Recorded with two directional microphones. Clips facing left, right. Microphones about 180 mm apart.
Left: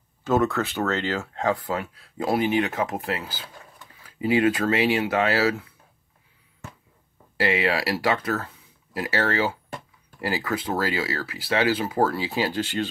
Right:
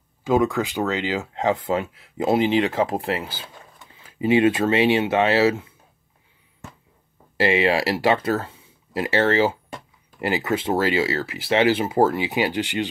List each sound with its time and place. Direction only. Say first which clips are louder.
0.2 s speech: right 2 dB; 10° right (ahead or behind)
7.3 s speech: right 4 dB; 25° right (ahead or behind)